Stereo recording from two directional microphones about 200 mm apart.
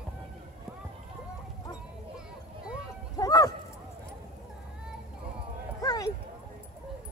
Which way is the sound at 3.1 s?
15° left (ahead or behind).